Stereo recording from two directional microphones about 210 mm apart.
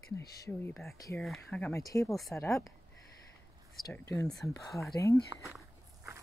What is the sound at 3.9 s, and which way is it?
Speech, 15° left (ahead or behind).